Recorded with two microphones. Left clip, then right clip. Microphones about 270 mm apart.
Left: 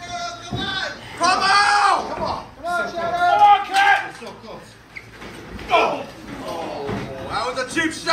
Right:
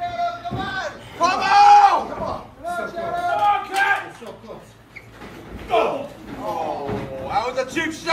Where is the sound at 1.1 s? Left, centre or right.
Right.